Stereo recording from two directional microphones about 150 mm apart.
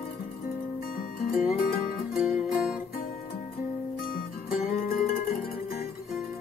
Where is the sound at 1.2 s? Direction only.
75° left (ahead or behind).